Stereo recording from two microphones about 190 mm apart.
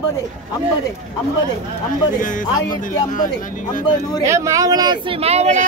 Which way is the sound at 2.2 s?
45° left (ahead or behind).